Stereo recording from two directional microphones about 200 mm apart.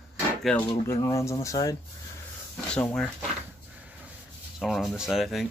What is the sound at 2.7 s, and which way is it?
Speech, 5° left (ahead or behind).